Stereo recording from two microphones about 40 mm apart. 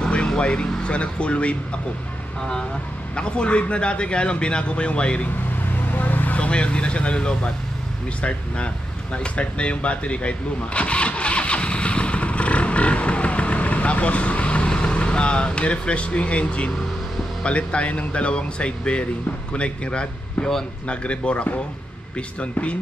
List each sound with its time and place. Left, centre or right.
0.1 s speech: left
3.2 s speech: left
5.9 s vehicle: left
6.3 s speech: left
9.1 s vehicle: left
17.4 s speech: left